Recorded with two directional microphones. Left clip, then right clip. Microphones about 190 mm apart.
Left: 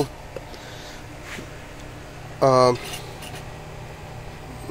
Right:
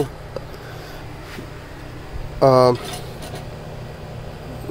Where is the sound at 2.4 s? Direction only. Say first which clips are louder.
Right 3 dB; 15° right (ahead or behind).